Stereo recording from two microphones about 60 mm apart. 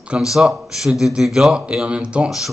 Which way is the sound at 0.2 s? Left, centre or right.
Centre.